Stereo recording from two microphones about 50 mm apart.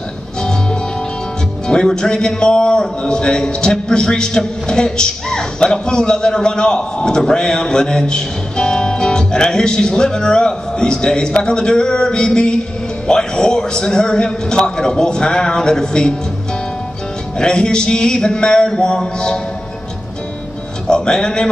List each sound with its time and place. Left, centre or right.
0.4 s music: centre
1.7 s a man's voice: centre
17.4 s a man's voice: centre
20.8 s a man's voice: centre